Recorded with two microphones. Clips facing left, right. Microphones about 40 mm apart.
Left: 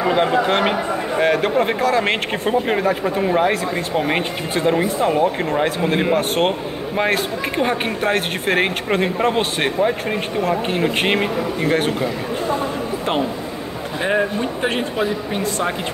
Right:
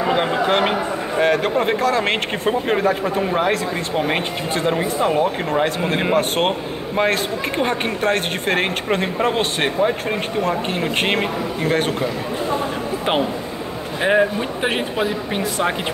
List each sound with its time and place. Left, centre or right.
0.0 s speech: centre
14.0 s speech: centre